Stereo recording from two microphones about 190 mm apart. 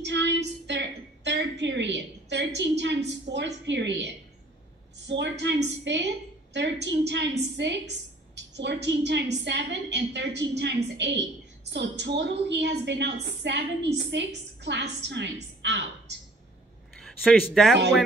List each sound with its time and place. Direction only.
0.0 s a sound: 70° right (ahead or behind)
5.0 s a woman's voice: 65° right (ahead or behind)
17.0 s speech: centre (ahead or behind)